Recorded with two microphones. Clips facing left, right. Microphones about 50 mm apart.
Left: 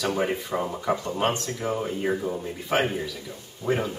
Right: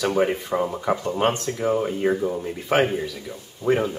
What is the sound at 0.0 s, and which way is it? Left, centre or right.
Speech, centre.